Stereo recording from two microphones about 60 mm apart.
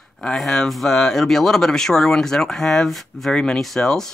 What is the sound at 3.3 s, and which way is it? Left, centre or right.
Speech, centre.